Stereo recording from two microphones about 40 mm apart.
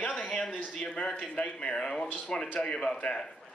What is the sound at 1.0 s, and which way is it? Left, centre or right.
A man's voice, left.